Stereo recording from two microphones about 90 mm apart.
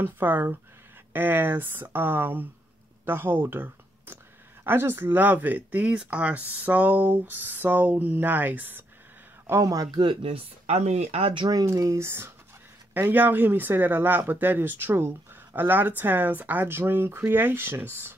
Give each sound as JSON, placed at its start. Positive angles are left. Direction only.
{"t": 0.0, "sound": "speech", "side_deg": -25}
{"t": 9.5, "sound": "speech", "side_deg": -40}
{"t": 9.9, "sound": "speech", "side_deg": -80}
{"t": 11.1, "sound": "speech", "side_deg": -90}
{"t": 11.6, "sound": "speech", "side_deg": -35}